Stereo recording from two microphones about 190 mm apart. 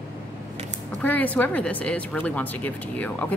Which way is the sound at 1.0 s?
10° left (ahead or behind).